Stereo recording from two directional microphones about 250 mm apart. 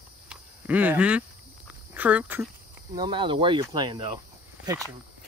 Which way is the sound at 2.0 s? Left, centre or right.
Centre.